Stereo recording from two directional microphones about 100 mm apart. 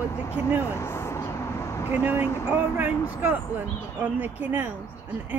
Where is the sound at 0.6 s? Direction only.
25° left (ahead or behind).